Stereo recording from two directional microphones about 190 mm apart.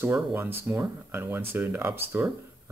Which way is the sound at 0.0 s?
10° right (ahead or behind).